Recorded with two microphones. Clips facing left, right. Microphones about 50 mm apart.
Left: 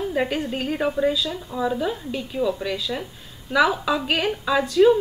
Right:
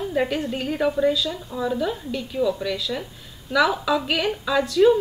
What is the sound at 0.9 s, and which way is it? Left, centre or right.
A woman's voice, centre.